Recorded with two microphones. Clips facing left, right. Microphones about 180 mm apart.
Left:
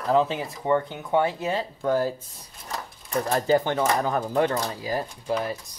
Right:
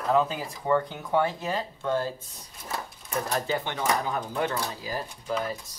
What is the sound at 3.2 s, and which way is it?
Speech, 40° left (ahead or behind).